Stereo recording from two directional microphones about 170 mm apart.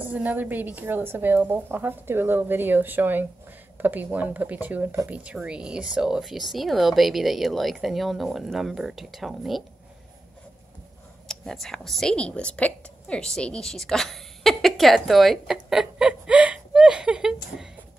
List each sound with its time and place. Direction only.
0.0 s a woman's voice: 10° right (ahead or behind)
11.2 s a woman's voice: centre (ahead or behind)